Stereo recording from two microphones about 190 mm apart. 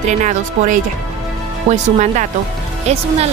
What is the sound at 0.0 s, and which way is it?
Speech, 40° right (ahead or behind).